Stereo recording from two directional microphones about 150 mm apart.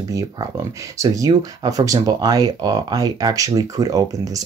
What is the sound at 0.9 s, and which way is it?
Speech, 25° right (ahead or behind).